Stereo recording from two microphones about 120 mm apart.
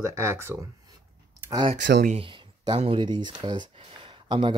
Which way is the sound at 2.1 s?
45° right (ahead or behind).